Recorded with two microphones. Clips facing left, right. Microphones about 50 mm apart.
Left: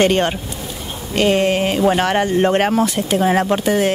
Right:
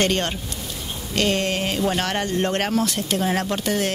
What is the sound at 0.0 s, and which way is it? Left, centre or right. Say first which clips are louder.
Speech: left 7 dB; centre.